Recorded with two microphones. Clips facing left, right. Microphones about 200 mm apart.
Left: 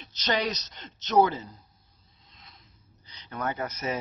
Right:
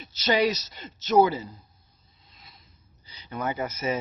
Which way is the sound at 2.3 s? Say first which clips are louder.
Right 1 dB; 5° right (ahead or behind).